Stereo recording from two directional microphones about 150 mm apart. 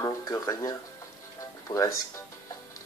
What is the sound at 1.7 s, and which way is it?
Speech, 30° left (ahead or behind).